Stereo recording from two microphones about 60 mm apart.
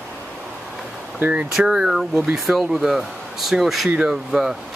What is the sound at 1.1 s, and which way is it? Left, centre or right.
Speech, right.